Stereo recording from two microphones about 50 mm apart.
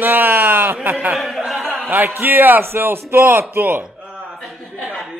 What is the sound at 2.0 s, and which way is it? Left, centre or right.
Speech, right.